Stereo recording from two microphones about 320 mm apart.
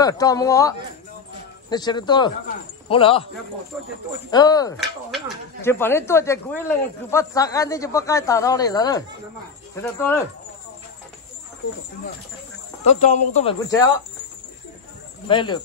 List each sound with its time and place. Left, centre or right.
0.0 s speech: centre
4.3 s speech: centre
12.8 s speech: left
15.2 s speech: centre